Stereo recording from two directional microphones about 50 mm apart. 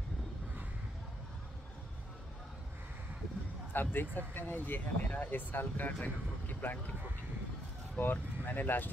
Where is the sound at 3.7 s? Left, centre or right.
Left.